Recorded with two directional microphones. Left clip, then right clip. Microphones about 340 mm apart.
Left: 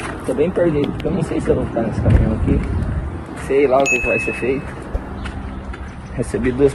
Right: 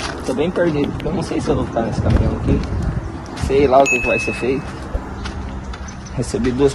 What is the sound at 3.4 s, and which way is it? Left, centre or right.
Speech, centre.